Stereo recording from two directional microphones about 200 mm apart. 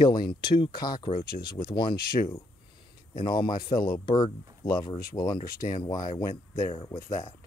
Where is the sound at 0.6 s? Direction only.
20° left (ahead or behind).